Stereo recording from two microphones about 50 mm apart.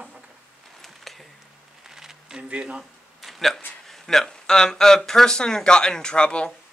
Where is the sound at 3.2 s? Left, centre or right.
Centre.